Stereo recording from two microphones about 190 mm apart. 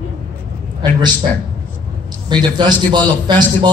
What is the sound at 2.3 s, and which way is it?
Speech, 25° right (ahead or behind).